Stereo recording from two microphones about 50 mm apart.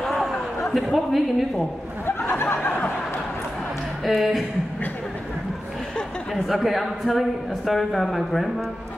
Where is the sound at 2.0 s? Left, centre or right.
Left.